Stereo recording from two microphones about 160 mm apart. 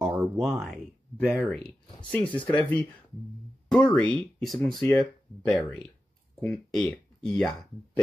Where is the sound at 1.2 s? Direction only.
Centre (ahead or behind).